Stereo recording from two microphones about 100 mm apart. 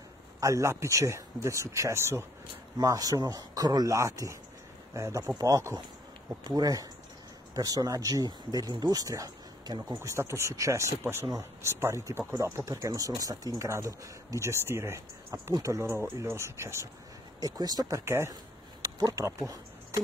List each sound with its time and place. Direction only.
0.4 s speech: 30° right (ahead or behind)
9.9 s speech: 30° right (ahead or behind)
17.4 s speech: 40° right (ahead or behind)
18.3 s a sound: 40° right (ahead or behind)